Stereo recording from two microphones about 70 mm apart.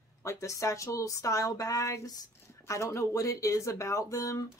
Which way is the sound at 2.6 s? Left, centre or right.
Left.